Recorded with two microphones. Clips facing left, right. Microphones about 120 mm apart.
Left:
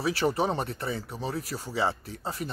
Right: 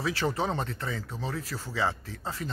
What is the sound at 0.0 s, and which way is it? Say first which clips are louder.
Speech: left 3 dB; 15° left (ahead or behind).